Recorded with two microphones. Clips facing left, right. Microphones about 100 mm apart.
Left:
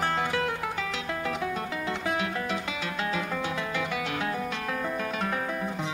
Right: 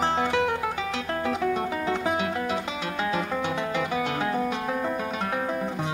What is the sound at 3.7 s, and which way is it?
Music, 30° right (ahead or behind).